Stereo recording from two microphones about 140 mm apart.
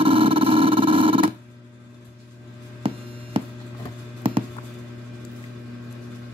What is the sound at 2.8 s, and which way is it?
Hum, 40° right (ahead or behind).